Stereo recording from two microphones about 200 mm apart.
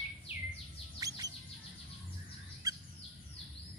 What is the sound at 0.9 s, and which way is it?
Chirp, 15° right (ahead or behind).